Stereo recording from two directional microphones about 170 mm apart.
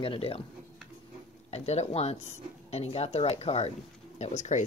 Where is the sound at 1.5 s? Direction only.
40° left (ahead or behind).